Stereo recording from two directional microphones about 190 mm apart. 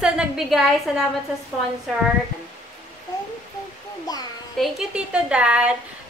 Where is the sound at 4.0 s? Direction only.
20° left (ahead or behind).